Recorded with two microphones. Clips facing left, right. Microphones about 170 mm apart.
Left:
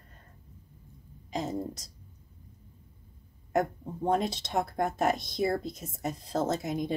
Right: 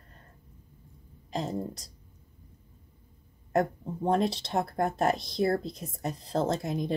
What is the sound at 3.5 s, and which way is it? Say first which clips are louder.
Speech: right 1 dB; centre (ahead or behind).